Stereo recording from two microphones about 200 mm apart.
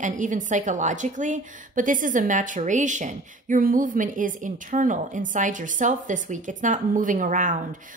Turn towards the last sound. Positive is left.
turn(degrees=-40)  # may be behind; listen again after turning